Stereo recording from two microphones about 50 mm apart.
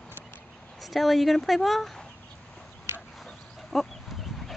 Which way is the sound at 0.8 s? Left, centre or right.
Centre.